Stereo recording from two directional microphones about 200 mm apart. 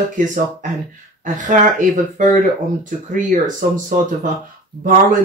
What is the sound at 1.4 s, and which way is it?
Speech, 40° right (ahead or behind).